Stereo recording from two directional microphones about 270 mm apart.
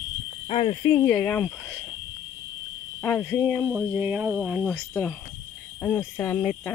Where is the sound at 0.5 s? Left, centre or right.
Centre.